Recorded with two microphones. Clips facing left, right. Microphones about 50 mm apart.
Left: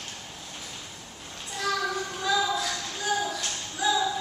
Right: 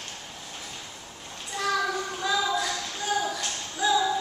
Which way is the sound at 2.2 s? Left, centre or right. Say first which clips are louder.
Left 1 dB; centre.